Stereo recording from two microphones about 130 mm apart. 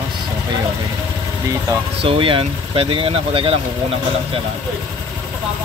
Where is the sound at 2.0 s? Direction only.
45° right (ahead or behind).